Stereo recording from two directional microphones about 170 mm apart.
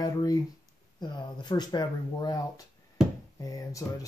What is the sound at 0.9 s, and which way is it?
Speech, 25° left (ahead or behind).